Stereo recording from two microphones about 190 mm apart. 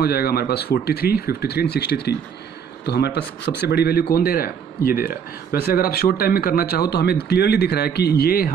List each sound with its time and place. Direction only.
0.0 s a man's voice: 55° left (ahead or behind)